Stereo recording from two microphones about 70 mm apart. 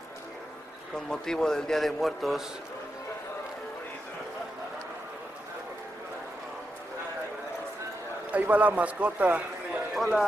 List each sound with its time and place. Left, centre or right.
0.9 s a man's voice: centre
8.3 s a man's voice: right
9.9 s speech: centre